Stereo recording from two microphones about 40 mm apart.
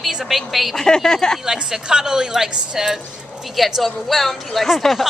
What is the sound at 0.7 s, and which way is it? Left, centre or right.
Speech, centre.